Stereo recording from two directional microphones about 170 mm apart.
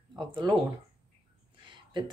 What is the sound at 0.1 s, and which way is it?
Speech, 25° right (ahead or behind).